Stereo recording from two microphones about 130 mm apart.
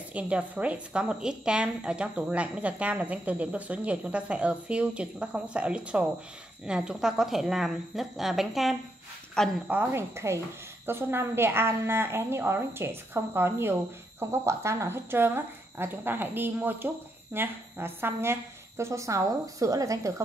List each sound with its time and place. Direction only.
0.1 s a woman's voice: 10° right (ahead or behind)
9.7 s a woman's voice: 15° right (ahead or behind)